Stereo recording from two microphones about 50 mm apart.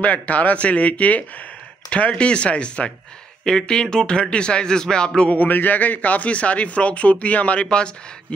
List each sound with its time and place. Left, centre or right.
0.0 s speech: left
5.3 s speech: left
7.6 s speech: centre